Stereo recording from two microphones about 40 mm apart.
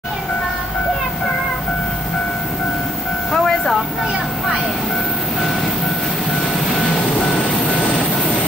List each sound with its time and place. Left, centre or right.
3.3 s train: centre